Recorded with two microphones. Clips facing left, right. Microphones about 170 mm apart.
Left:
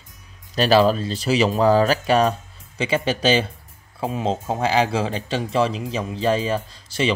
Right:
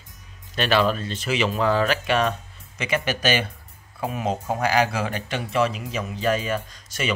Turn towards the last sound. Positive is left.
turn(degrees=30)  # may be behind; listen again after turning